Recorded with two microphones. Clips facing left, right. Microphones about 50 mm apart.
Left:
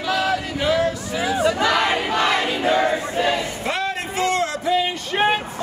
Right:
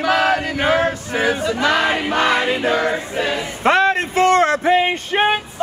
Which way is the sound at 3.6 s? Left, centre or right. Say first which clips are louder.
Right 9 dB; right.